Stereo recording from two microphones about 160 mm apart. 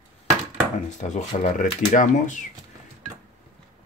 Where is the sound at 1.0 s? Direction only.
45° left (ahead or behind).